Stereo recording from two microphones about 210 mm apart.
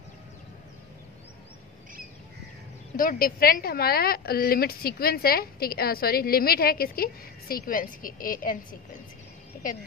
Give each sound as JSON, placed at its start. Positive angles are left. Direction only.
{"t": 3.0, "sound": "a woman's voice", "side_deg": 45}